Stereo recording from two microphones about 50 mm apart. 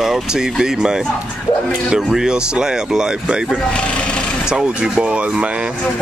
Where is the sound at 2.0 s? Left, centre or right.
Centre.